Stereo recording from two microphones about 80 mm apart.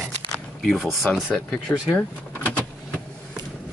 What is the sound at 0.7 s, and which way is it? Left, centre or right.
Speech, centre.